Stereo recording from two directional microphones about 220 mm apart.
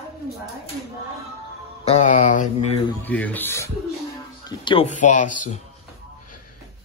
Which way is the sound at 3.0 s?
5° left (ahead or behind).